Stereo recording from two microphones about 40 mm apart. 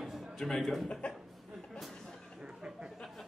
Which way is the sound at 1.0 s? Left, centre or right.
Left.